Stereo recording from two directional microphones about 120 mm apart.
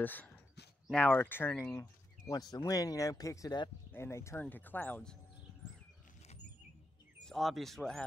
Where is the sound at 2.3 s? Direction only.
30° left (ahead or behind).